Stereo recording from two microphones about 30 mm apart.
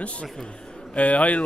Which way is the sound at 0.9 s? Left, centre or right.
Left.